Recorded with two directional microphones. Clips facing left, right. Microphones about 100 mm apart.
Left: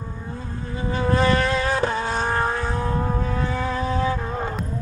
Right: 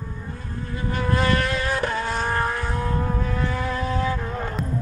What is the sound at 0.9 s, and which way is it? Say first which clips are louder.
Vehicle: left 3 dB; 25° left (ahead or behind).